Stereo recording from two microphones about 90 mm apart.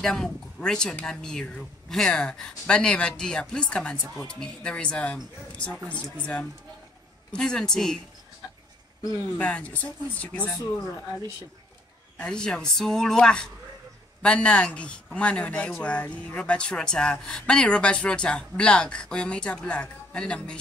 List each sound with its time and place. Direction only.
0.0 s a woman's voice: 5° left (ahead or behind)
7.3 s a woman's voice: 5° left (ahead or behind)
9.4 s a woman's voice: 15° left (ahead or behind)
12.2 s a woman's voice: 10° left (ahead or behind)